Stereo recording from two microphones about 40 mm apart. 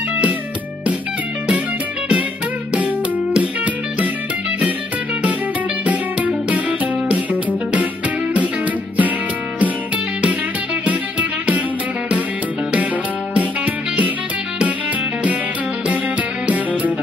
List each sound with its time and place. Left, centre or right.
3.3 s music: right
5.9 s music: right
10.9 s music: right
16.4 s music: right